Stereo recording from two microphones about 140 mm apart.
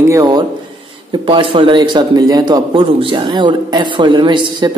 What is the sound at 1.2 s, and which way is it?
A man's voice, 40° right (ahead or behind).